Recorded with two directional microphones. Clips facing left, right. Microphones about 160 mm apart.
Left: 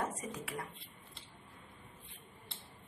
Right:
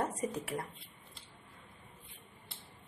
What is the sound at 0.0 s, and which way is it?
Speech, 35° right (ahead or behind).